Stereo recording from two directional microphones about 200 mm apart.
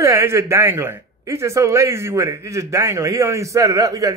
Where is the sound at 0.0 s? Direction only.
15° right (ahead or behind).